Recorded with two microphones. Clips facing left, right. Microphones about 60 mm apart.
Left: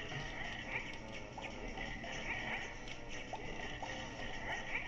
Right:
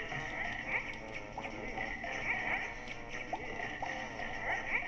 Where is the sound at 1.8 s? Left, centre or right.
Right.